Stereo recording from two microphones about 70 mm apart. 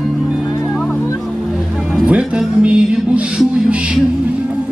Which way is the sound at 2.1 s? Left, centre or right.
Centre.